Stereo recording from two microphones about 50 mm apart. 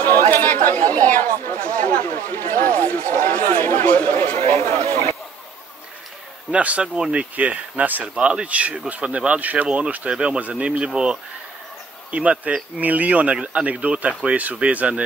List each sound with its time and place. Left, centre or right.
0.0 s chatter: left
1.7 s speech: left
4.8 s speech: right
6.5 s speech: right